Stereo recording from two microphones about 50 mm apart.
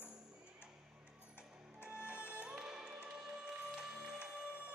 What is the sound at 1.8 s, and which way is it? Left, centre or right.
Music, right.